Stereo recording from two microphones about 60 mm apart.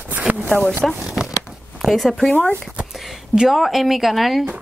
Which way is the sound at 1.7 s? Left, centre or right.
Centre.